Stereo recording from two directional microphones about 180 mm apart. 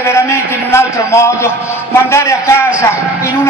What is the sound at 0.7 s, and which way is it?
A man's voice, 15° left (ahead or behind).